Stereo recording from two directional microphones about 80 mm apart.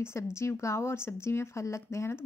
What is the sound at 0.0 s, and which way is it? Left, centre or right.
A woman's voice, left.